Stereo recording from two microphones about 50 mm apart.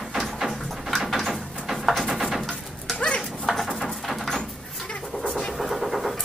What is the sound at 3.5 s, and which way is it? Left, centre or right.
Bird, centre.